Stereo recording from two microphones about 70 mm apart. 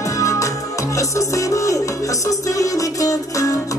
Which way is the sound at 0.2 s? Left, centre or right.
Left.